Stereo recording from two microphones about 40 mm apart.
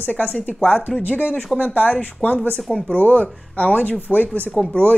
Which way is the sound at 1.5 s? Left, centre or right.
Right.